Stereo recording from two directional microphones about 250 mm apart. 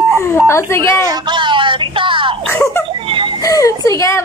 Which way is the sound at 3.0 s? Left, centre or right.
Right.